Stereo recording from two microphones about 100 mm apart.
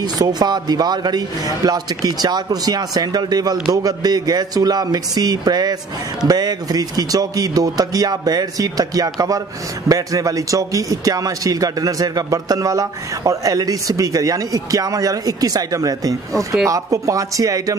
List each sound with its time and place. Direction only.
0.0 s a man's voice: 40° right (ahead or behind)